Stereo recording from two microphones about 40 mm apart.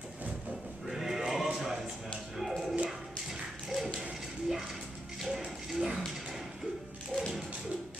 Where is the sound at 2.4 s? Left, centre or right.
Centre.